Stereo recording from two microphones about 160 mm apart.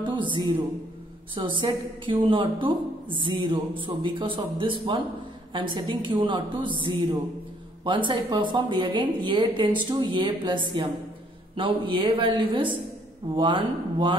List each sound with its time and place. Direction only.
0.0 s a woman's voice: 30° right (ahead or behind)